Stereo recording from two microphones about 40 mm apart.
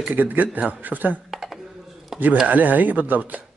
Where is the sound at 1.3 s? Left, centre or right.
Centre.